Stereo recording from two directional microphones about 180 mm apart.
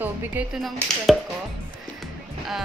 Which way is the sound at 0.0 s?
10° right (ahead or behind).